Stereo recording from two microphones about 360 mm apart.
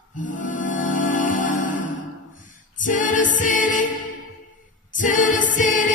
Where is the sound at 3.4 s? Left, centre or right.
Left.